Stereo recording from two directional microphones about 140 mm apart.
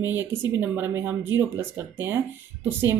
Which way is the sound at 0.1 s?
15° right (ahead or behind).